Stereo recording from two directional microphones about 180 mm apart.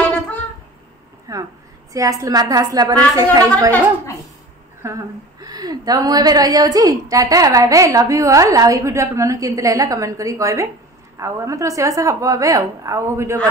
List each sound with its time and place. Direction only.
1.3 s a woman's voice: 20° right (ahead or behind)
4.8 s a woman's voice: 20° right (ahead or behind)